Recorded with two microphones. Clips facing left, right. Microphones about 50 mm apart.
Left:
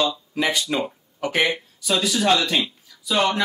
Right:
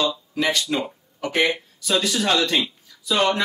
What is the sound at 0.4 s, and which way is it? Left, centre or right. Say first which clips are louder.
Speech: even; centre.